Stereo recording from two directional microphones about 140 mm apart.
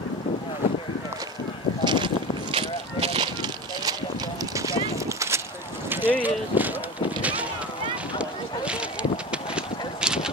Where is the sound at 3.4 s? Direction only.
30° right (ahead or behind); by 7.4 s 10° right (ahead or behind).